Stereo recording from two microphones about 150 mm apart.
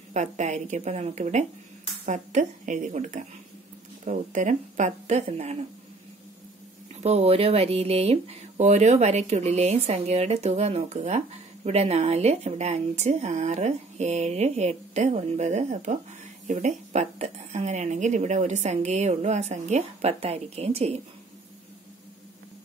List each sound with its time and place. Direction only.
0.1 s speech: 50° right (ahead or behind)
7.0 s speech: 45° right (ahead or behind)